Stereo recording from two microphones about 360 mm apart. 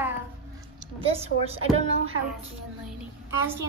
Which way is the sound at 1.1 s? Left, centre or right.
Centre.